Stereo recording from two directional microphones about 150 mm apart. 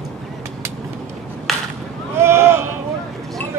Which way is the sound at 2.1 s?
15° right (ahead or behind).